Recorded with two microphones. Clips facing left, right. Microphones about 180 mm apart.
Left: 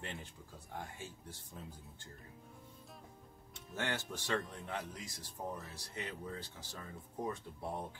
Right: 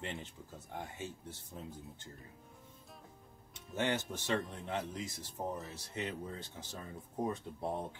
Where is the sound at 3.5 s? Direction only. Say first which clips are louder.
Right 5 dB; 20° right (ahead or behind).